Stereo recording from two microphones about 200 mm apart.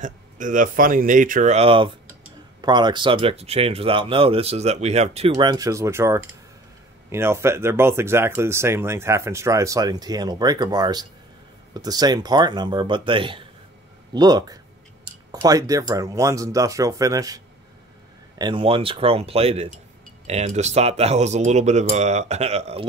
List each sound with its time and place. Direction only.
0.0 s speech: 40° right (ahead or behind); by 17.4 s 15° right (ahead or behind)
18.4 s speech: 25° right (ahead or behind)